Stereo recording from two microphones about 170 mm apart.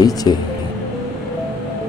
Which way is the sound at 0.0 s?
20° left (ahead or behind).